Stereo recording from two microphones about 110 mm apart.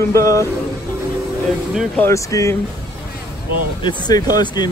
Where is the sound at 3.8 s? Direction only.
45° left (ahead or behind).